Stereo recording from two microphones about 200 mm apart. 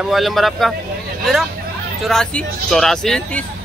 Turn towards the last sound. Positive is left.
turn(degrees=5)  # may be behind; listen again after turning